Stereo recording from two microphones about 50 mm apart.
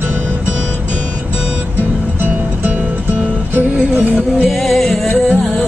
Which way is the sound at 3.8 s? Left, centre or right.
Right.